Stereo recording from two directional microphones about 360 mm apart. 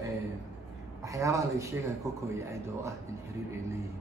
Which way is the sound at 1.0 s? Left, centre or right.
Centre.